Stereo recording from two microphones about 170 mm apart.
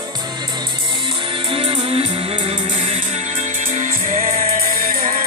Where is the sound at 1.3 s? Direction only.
35° right (ahead or behind).